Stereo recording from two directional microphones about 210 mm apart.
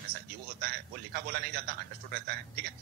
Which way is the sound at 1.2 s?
50° right (ahead or behind).